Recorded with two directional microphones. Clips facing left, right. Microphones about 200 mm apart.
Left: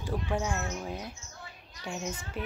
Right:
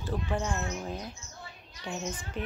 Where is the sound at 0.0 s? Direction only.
10° left (ahead or behind).